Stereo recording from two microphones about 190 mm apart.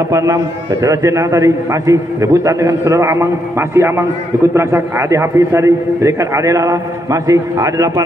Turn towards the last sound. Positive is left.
turn(degrees=-15)  # may be behind; listen again after turning